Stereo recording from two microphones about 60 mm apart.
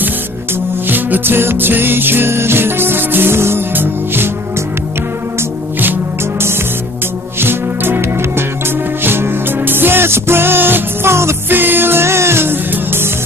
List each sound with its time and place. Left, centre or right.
0.8 s music: right
7.3 s music: right
11.5 s music: right